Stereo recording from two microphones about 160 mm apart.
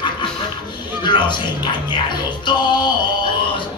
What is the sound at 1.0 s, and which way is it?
Music, 30° left (ahead or behind).